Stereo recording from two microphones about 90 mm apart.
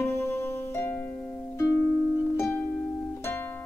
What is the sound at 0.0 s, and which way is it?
Music, 30° left (ahead or behind).